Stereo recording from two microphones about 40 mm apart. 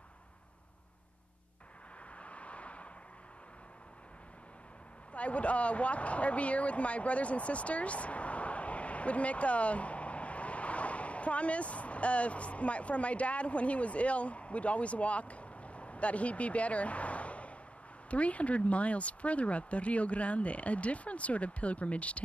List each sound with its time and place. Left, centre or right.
2.1 s vehicle: left
5.1 s speech: left